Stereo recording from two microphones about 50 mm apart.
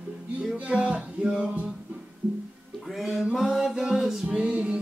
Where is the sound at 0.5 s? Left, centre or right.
Right.